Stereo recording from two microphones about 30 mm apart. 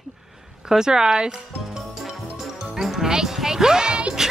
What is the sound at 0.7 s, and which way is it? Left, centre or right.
Speech, centre.